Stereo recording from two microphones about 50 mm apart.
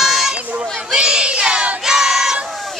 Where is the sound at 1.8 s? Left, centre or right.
Centre.